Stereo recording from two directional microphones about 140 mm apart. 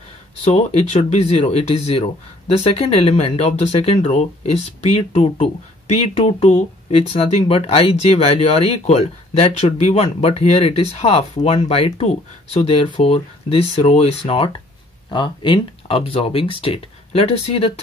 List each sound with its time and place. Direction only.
0.4 s speech: 50° left (ahead or behind)